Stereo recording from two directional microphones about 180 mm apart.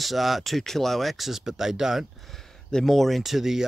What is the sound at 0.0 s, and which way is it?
Speech, centre (ahead or behind).